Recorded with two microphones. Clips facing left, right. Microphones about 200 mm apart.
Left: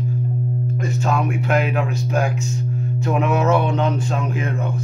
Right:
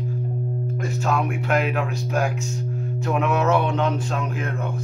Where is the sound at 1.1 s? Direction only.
Centre (ahead or behind).